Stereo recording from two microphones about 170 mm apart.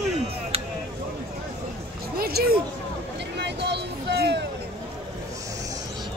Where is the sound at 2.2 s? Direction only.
65° right (ahead or behind).